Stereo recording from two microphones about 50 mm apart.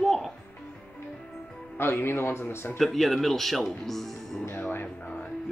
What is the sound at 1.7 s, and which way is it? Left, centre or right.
A man's voice, left.